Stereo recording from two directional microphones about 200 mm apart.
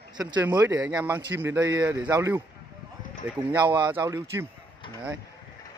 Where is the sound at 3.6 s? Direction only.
20° right (ahead or behind).